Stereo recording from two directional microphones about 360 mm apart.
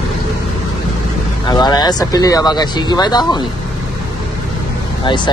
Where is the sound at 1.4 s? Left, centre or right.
Centre.